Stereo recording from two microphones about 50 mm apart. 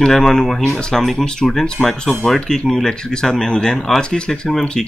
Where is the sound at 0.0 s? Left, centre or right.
Centre.